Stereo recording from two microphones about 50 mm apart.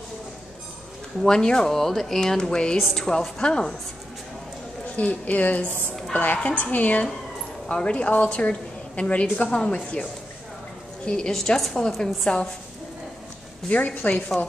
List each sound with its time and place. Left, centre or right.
1.2 s a woman's voice: centre
4.9 s a woman's voice: left
7.6 s a woman's voice: centre
11.1 s a woman's voice: centre
13.7 s a woman's voice: left